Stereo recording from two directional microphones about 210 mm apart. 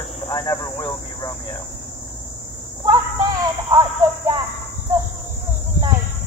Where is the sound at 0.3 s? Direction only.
20° left (ahead or behind).